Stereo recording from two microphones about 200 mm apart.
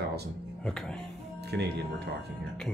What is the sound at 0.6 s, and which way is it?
Speech, 5° left (ahead or behind).